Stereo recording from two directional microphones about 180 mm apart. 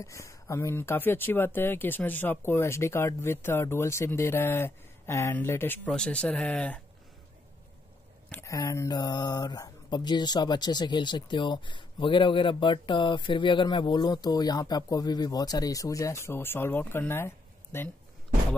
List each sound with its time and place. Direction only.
0.0 s speech: 15° left (ahead or behind)
8.3 s speech: 15° left (ahead or behind)